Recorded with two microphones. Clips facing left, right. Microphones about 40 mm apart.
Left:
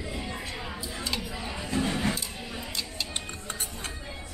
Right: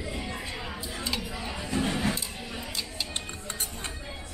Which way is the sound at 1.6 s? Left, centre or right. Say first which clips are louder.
Even; centre.